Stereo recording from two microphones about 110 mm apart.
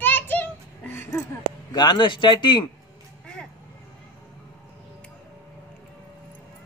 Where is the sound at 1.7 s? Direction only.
40° left (ahead or behind).